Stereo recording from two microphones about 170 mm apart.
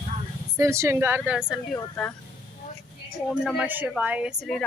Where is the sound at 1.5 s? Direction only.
5° left (ahead or behind).